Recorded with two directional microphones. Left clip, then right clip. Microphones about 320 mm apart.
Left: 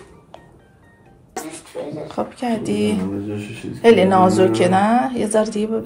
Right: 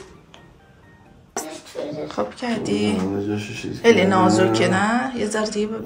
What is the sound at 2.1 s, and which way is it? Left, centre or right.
Speech, centre.